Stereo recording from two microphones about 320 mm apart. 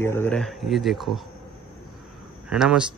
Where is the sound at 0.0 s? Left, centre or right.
Centre.